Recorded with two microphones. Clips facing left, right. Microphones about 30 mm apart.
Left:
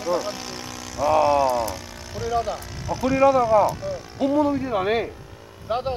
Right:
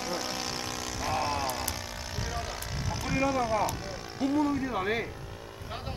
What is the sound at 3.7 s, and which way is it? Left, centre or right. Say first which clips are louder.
Speech: left 8 dB; centre.